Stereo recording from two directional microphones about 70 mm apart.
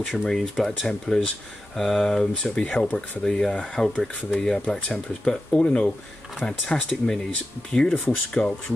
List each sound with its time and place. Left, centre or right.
0.0 s speech: centre
3.3 s speech: centre